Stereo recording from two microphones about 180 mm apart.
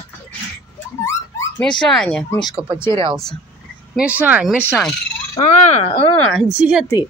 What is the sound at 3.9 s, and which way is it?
Speech, 5° right (ahead or behind).